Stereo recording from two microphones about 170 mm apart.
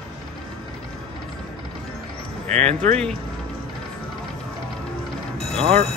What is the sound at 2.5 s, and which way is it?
Speech, 40° right (ahead or behind).